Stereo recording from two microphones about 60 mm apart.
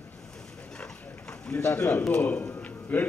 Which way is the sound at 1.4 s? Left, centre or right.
Centre.